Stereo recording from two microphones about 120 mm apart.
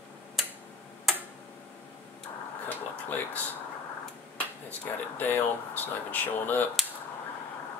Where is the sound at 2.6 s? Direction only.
15° left (ahead or behind).